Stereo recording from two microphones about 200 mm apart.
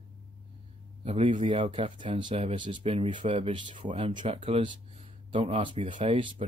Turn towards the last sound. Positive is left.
turn(degrees=-25)  # may be behind; listen again after turning